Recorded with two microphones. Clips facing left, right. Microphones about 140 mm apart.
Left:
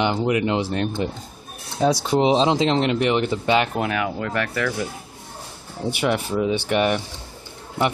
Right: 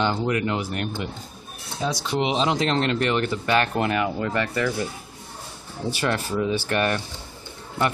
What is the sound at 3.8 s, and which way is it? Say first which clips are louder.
Speech: even; centre (ahead or behind).